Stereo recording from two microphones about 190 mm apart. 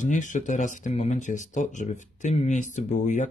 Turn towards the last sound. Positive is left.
turn(degrees=40)  # may be behind; listen again after turning